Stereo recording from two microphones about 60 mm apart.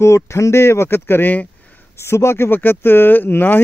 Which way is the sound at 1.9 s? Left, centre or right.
Left.